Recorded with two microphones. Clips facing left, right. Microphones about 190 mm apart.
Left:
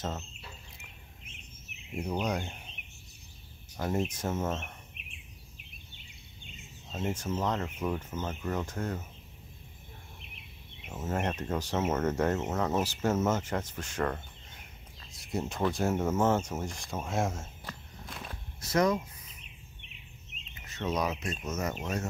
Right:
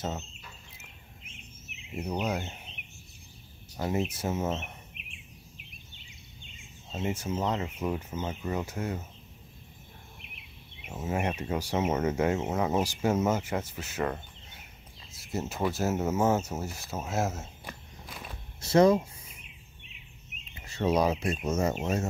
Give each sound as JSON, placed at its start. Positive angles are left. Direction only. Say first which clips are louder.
{"t": 1.9, "sound": "speech", "louder": "right 1 dB", "side_deg": 0}
{"t": 3.7, "sound": "speech", "louder": "right 1 dB", "side_deg": -5}
{"t": 6.9, "sound": "speech", "louder": "right 1 dB", "side_deg": -10}
{"t": 10.8, "sound": "speech", "louder": "right 2 dB", "side_deg": -10}
{"t": 18.6, "sound": "speech", "louder": "right 6 dB", "side_deg": -30}
{"t": 20.5, "sound": "speech", "louder": "right 6 dB", "side_deg": -30}